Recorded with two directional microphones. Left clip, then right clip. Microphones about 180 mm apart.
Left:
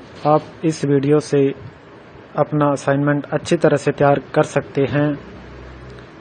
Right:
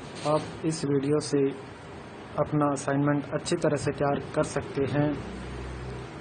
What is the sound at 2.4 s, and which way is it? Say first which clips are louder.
Speech: left 9 dB; 35° left (ahead or behind).